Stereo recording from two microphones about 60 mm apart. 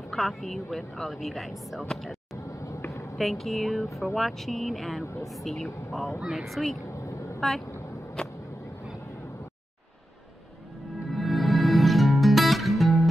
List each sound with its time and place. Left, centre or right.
0.1 s speech: centre
2.4 s vehicle: left
2.9 s a sound: left
3.2 s speech: centre
5.0 s speech: left
5.3 s speech: centre
6.9 s vehicle: left
7.3 s speech: centre
8.2 s a sound: centre
11.1 s music: centre